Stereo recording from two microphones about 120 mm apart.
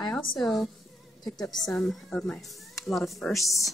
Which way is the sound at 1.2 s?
35° left (ahead or behind).